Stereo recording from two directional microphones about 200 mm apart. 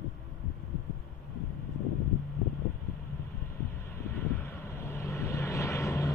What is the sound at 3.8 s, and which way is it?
Vehicle, 10° left (ahead or behind).